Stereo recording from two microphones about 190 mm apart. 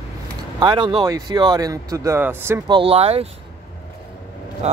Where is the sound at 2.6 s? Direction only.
30° right (ahead or behind).